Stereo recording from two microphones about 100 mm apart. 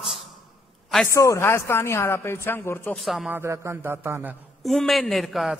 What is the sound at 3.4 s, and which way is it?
Speech, 30° right (ahead or behind).